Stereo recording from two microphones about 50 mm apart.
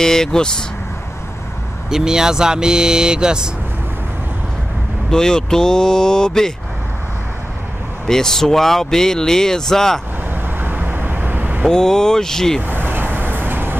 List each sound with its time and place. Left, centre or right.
0.0 s speech: centre
1.9 s speech: centre
5.1 s speech: centre
8.1 s speech: centre
10.3 s vehicle: right
11.7 s speech: centre
12.6 s vehicle: right